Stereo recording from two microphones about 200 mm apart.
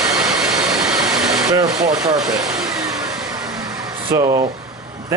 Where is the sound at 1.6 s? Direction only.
20° right (ahead or behind).